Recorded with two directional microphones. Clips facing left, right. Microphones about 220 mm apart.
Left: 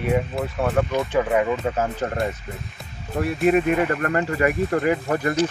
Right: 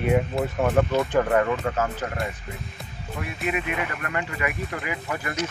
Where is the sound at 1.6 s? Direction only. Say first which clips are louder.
Left 3 dB; 30° left (ahead or behind).